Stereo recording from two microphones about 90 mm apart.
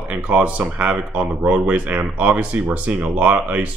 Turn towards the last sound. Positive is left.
turn(degrees=-15)  # may be behind; listen again after turning